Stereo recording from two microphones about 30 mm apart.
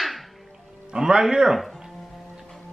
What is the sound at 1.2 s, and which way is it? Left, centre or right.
Speech, centre.